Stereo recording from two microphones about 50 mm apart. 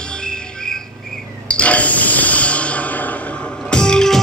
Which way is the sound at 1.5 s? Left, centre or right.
Left.